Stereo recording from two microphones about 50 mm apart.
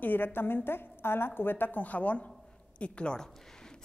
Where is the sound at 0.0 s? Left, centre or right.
Left.